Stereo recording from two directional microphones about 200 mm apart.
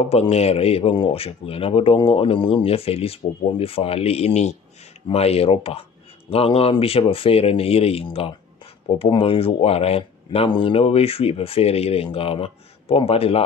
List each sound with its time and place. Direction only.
0.1 s speech: 30° left (ahead or behind)